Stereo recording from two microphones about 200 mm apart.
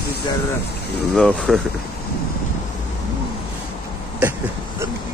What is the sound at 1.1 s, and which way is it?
Speech, centre (ahead or behind).